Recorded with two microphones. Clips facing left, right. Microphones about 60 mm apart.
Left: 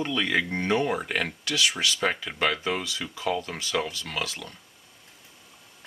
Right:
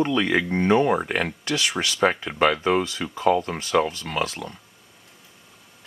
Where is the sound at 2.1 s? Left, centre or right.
Centre.